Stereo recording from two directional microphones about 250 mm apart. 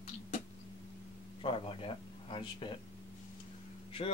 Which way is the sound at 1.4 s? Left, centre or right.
Left.